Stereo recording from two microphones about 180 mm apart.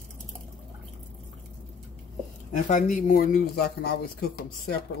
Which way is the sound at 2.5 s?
45° left (ahead or behind).